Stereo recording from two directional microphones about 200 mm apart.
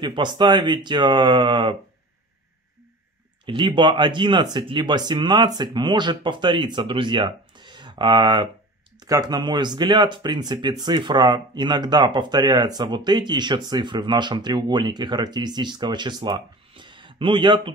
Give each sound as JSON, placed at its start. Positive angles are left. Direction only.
{"t": 0.0, "sound": "speech", "side_deg": -25}
{"t": 3.4, "sound": "speech", "side_deg": -25}